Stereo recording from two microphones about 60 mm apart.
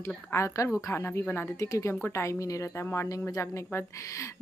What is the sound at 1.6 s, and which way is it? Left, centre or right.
Speech, left.